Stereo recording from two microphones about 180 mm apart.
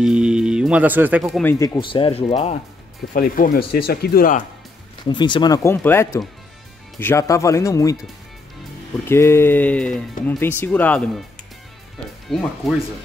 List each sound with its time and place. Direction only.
0.0 s speech: 5° right (ahead or behind)
1.4 s speech: 15° left (ahead or behind)
1.8 s speech: 30° left (ahead or behind)
3.1 s speech: 50° left (ahead or behind)
5.0 s speech: 25° left (ahead or behind)
9.1 s speech: 15° left (ahead or behind)
12.3 s speech: centre (ahead or behind)